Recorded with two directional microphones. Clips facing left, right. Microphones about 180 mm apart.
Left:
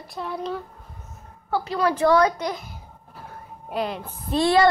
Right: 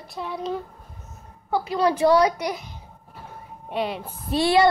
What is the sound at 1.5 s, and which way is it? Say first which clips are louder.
A woman's voice: right 1 dB; 10° right (ahead or behind).